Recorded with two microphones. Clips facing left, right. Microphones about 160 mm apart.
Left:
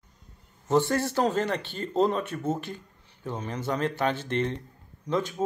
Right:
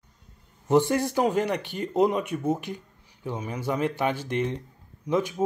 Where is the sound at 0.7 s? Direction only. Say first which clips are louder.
Right 2 dB; 15° right (ahead or behind).